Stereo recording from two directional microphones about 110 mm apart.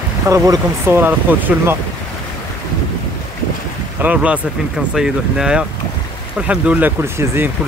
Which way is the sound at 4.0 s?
15° right (ahead or behind).